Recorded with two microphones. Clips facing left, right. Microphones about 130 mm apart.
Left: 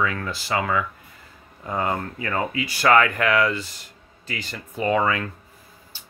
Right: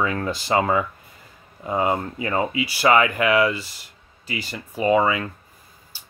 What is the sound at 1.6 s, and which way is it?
Speech, 15° right (ahead or behind).